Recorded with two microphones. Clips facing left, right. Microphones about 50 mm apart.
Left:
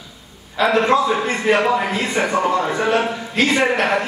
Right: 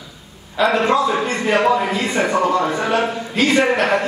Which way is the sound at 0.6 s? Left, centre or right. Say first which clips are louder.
Even; centre.